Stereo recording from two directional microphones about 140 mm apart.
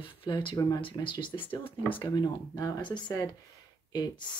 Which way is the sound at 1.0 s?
35° left (ahead or behind).